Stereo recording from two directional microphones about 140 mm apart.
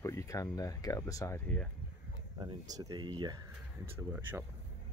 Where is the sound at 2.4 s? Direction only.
30° right (ahead or behind).